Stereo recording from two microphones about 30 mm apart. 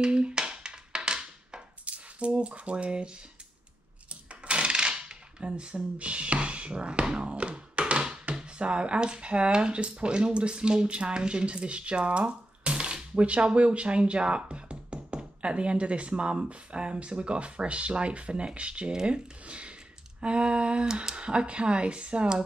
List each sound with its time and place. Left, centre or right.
0.0 s a sound: right
1.9 s speech: right
4.1 s dishes: right
8.4 s speech: right
19.4 s a sound: right
20.2 s speech: right
20.9 s speech: right
21.2 s speech: right